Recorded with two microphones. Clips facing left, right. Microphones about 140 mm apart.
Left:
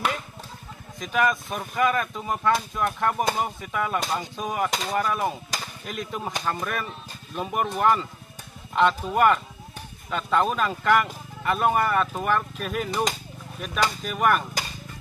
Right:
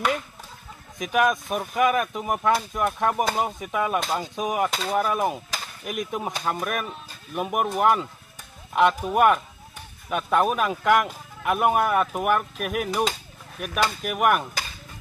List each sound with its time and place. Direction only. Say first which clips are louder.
1.1 s speech: right 2 dB; 15° right (ahead or behind)